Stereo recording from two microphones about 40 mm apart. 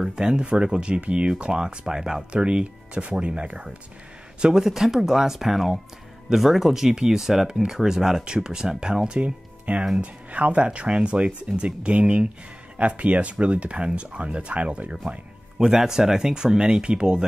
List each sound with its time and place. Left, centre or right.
0.0 s speech: centre
9.7 s speech: right
15.6 s speech: centre